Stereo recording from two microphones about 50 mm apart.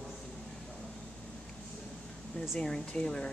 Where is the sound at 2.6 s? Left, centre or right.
Centre.